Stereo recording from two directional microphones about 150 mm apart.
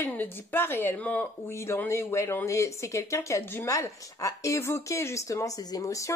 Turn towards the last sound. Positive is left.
turn(degrees=20)  # may be behind; listen again after turning